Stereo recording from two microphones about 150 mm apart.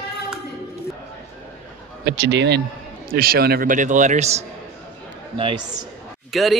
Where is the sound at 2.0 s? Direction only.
90° right; by 4.4 s 50° right (ahead or behind).